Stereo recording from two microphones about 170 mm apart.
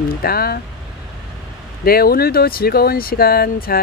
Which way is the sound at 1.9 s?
60° left (ahead or behind).